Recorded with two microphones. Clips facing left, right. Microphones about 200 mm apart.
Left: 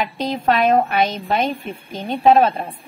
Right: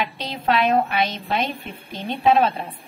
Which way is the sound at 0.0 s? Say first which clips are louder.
Left 5 dB; 45° left (ahead or behind).